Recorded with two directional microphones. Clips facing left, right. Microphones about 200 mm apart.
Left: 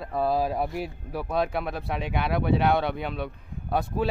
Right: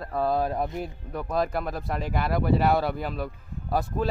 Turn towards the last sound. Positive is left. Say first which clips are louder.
# even
turn(degrees=0)  # may be behind; listen again after turning